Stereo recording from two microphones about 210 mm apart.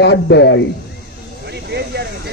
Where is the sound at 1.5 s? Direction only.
50° right (ahead or behind).